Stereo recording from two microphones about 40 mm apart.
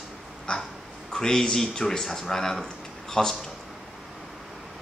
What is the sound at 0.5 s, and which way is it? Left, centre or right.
Dog, left.